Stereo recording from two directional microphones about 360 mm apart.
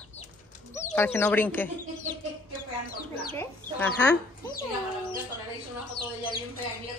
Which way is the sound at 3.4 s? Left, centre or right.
Centre.